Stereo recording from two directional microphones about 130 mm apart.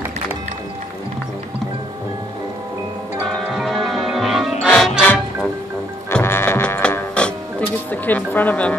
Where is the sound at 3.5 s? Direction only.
Centre (ahead or behind).